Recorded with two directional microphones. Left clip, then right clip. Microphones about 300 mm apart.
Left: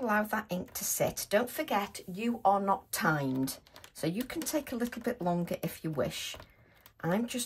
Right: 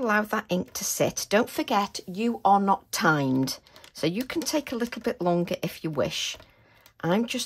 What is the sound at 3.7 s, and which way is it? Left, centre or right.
Computer keyboard, centre.